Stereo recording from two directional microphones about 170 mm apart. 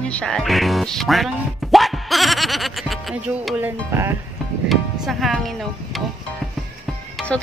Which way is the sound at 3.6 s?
15° right (ahead or behind).